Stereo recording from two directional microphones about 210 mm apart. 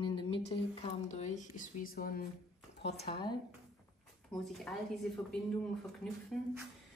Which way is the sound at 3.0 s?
25° left (ahead or behind).